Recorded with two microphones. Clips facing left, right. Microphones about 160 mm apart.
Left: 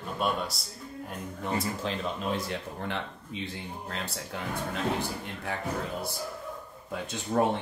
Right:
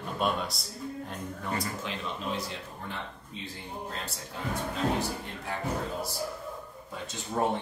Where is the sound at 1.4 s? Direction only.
25° left (ahead or behind).